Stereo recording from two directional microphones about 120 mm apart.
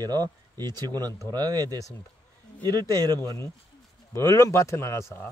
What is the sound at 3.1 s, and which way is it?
Speech, 25° left (ahead or behind).